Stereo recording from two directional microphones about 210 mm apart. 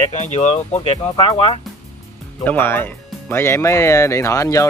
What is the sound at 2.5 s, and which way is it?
Speech, 10° left (ahead or behind).